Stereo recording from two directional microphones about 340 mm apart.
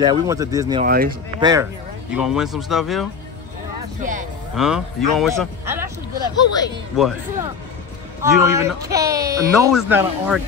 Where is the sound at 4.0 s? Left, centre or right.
Right.